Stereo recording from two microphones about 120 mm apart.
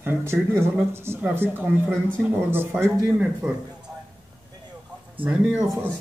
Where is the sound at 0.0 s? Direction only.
20° right (ahead or behind).